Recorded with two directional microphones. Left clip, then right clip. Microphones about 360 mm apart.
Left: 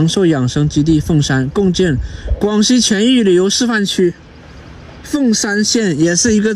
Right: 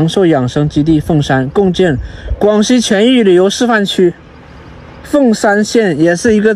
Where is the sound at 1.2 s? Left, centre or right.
Centre.